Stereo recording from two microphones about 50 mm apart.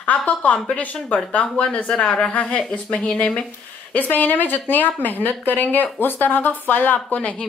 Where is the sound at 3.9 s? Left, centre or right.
Left.